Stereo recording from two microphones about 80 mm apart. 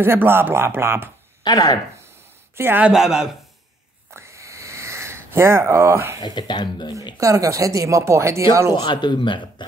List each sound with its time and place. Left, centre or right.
0.0 s speech: right
1.4 s speech: left
2.5 s speech: right
2.9 s speech: centre
4.1 s a sound: right
6.2 s a man's voice: left
7.2 s speech: right
8.7 s a man's voice: left